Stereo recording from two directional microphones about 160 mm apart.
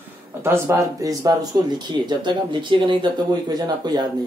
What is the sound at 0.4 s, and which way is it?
Speech, 15° right (ahead or behind).